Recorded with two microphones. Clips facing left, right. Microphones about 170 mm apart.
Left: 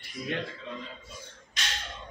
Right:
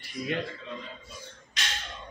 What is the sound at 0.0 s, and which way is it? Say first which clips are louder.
Speech: right 2 dB; centre (ahead or behind).